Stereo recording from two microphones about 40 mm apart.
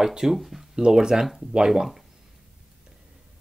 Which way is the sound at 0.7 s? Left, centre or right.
Centre.